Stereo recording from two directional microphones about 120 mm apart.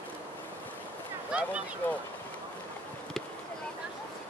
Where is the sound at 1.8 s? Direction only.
15° left (ahead or behind).